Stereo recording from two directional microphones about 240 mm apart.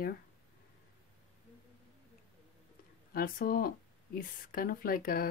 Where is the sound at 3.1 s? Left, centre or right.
Left.